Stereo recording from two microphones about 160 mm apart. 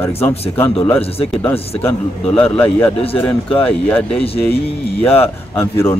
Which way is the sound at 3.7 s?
5° left (ahead or behind).